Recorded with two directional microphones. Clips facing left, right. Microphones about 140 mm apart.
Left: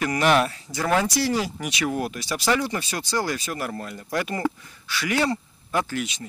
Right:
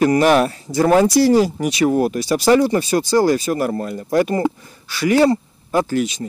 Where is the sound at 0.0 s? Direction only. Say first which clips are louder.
Right 7 dB; 35° right (ahead or behind).